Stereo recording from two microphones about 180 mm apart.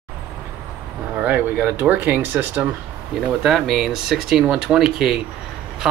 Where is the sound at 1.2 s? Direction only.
10° right (ahead or behind).